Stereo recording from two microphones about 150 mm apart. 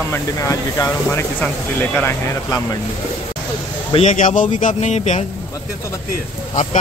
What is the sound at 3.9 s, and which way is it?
Speech, 50° left (ahead or behind).